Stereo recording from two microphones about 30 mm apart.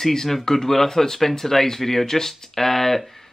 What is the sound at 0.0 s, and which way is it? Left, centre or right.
Speech, centre.